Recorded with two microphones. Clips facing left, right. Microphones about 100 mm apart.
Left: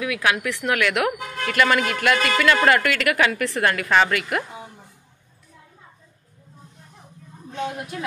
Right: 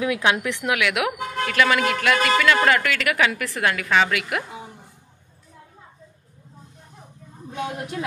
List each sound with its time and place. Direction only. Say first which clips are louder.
0.0 s speech: right 1 dB; 25° right (ahead or behind)
0.7 s a woman's voice: left 1 dB; 5° right (ahead or behind)